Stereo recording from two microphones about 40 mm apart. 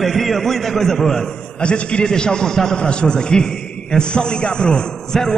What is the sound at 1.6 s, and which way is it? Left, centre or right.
A man's voice, left.